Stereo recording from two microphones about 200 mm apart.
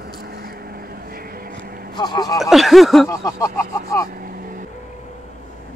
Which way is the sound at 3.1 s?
15° left (ahead or behind).